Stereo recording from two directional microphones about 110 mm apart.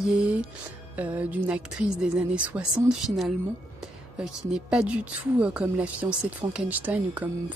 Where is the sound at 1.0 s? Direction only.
15° right (ahead or behind).